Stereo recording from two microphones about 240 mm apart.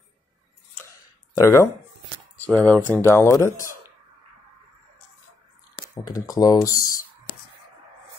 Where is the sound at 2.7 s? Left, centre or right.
Centre.